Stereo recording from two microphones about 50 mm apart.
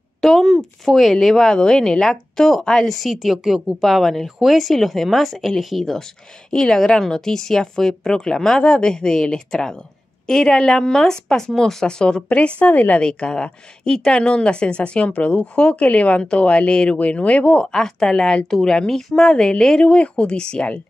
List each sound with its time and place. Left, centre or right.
0.2 s a woman's voice: centre
2.9 s a woman's voice: centre
12.3 s speech: left
13.0 s speech: centre
17.7 s a woman's voice: centre